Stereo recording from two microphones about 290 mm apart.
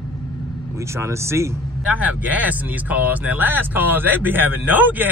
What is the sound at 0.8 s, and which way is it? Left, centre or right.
Speech, centre.